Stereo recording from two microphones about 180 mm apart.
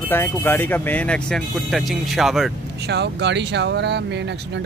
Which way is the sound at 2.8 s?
70° right (ahead or behind).